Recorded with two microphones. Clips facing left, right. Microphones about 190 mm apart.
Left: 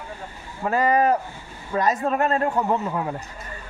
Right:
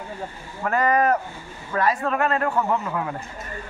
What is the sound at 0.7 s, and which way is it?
A man's voice, 30° left (ahead or behind).